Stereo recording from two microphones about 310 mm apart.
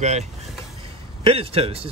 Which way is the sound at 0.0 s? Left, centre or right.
Right.